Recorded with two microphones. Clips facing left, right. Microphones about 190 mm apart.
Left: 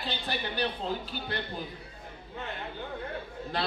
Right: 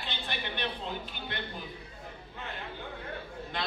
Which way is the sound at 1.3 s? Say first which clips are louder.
Left 4 dB; 35° left (ahead or behind).